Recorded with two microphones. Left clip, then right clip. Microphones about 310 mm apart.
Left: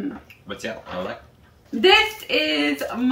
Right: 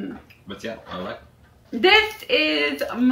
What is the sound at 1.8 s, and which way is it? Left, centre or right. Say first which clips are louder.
Speech: left 1 dB; centre.